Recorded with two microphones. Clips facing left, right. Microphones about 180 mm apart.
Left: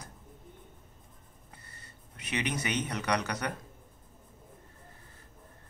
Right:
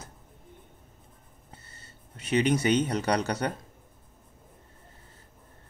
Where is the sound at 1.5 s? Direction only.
25° right (ahead or behind).